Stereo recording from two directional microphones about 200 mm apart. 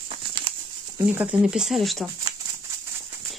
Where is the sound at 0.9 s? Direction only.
10° right (ahead or behind).